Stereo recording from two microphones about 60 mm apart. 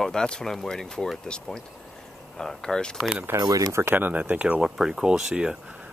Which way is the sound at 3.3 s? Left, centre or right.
Right.